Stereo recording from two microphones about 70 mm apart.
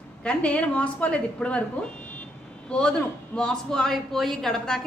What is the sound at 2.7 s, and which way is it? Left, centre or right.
A woman's voice, centre.